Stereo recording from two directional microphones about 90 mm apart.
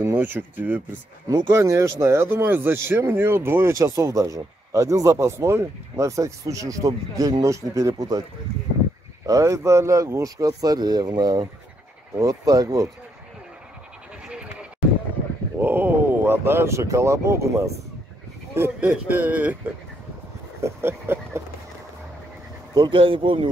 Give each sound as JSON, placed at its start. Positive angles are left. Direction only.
{"t": 0.0, "sound": "speech", "side_deg": -25}
{"t": 1.5, "sound": "speech", "side_deg": -30}
{"t": 3.7, "sound": "speech", "side_deg": -35}
{"t": 9.2, "sound": "speech", "side_deg": -35}
{"t": 14.2, "sound": "sheep", "side_deg": -10}
{"t": 15.6, "sound": "speech", "side_deg": -25}
{"t": 20.6, "sound": "speech", "side_deg": -25}
{"t": 22.8, "sound": "speech", "side_deg": -70}